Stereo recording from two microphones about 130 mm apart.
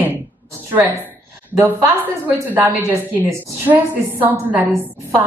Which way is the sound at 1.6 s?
15° right (ahead or behind).